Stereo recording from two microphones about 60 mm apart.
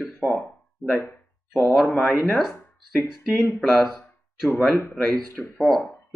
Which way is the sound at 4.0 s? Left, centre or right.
Left.